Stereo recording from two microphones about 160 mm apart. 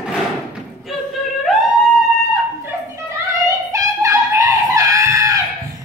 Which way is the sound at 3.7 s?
20° right (ahead or behind).